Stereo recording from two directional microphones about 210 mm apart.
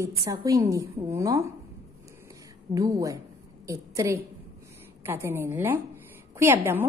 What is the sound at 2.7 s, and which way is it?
A woman's voice, 15° right (ahead or behind).